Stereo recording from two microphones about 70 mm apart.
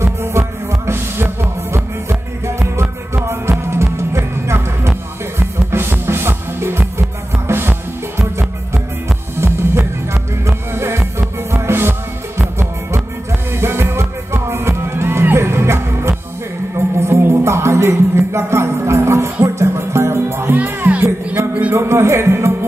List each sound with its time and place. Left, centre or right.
0.0 s music: right
9.4 s music: right
13.5 s music: right
20.5 s music: right
21.4 s a sound: right
21.7 s music: right